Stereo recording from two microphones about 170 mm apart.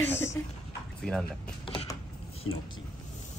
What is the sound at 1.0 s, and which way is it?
Speech, 5° left (ahead or behind).